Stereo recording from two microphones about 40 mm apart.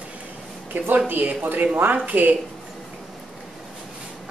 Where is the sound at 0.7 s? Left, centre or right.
Right.